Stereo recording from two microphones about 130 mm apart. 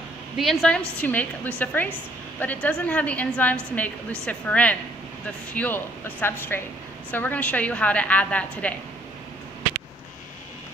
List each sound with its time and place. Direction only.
0.4 s a woman's voice: centre (ahead or behind)